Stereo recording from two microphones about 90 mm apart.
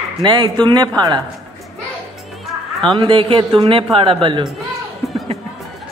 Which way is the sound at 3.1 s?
70° right (ahead or behind).